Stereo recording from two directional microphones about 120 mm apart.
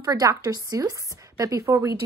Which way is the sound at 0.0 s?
30° right (ahead or behind).